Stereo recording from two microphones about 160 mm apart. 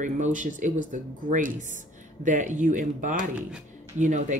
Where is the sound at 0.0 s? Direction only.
50° right (ahead or behind).